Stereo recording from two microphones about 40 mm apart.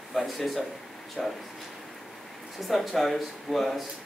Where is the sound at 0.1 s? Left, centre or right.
Centre.